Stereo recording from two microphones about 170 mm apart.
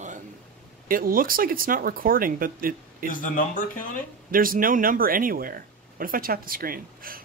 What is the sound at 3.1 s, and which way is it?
Speech, 50° left (ahead or behind).